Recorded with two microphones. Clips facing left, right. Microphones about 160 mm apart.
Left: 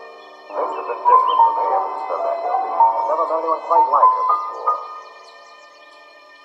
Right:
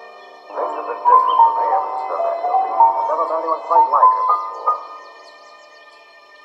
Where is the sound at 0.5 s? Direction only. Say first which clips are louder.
Even; centre (ahead or behind).